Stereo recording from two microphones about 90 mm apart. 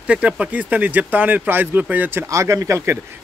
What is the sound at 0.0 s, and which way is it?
Speech, 10° right (ahead or behind).